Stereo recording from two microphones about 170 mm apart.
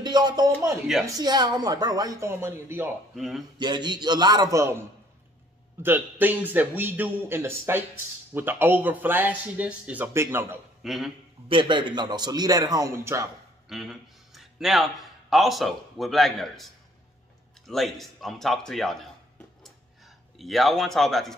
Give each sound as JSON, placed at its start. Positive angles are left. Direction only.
{"t": 0.0, "sound": "music", "side_deg": -25}
{"t": 1.0, "sound": "a man's voice", "side_deg": -25}
{"t": 3.2, "sound": "speech", "side_deg": 0}
{"t": 3.5, "sound": "a man's voice", "side_deg": -25}
{"t": 10.8, "sound": "a man's voice", "side_deg": 0}
{"t": 11.4, "sound": "a man's voice", "side_deg": -30}
{"t": 13.7, "sound": "a man's voice", "side_deg": 0}
{"t": 19.6, "sound": "a sound", "side_deg": 0}